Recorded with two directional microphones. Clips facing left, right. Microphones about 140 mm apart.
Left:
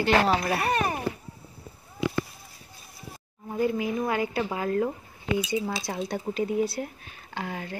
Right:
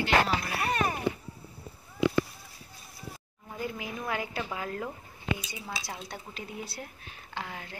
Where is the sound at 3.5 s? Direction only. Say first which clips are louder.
Left 10 dB; 35° left (ahead or behind).